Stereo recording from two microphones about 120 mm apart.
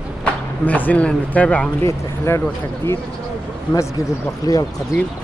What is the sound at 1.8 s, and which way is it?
Speech, 25° left (ahead or behind).